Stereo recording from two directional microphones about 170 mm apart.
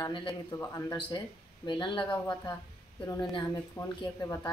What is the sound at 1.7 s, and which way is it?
Speech, 30° left (ahead or behind).